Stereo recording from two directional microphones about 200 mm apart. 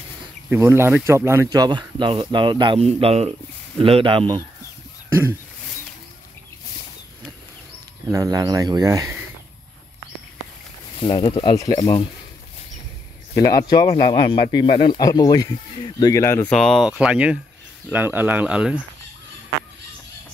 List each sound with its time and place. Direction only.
0.5 s speech: 10° right (ahead or behind)
8.1 s speech: 15° right (ahead or behind)
11.0 s speech: 25° left (ahead or behind)
13.3 s speech: 15° left (ahead or behind)
16.5 s speech: centre (ahead or behind)